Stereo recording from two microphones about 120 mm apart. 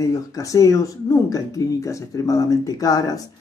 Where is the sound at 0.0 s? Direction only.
30° left (ahead or behind).